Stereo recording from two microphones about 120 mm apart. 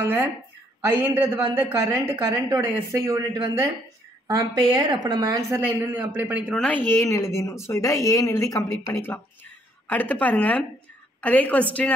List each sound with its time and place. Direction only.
0.0 s a man's voice: 15° right (ahead or behind)
4.4 s a woman's voice: 35° right (ahead or behind)
5.6 s a man's voice: 15° right (ahead or behind)
6.5 s a woman's voice: 5° left (ahead or behind)
6.9 s a woman's voice: 25° left (ahead or behind)